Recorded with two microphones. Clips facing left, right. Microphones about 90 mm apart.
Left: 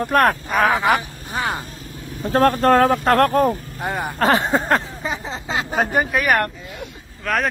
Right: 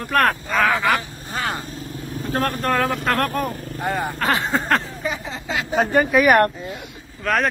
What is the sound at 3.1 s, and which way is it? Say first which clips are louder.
Speech: left 6 dB; 25° left (ahead or behind).